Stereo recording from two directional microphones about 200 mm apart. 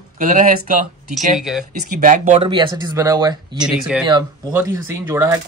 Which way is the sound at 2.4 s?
25° right (ahead or behind).